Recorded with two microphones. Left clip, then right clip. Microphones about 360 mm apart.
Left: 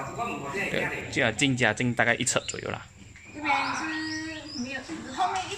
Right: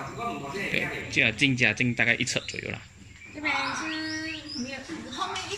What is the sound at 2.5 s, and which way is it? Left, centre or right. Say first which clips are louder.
Speech: left 1 dB; left.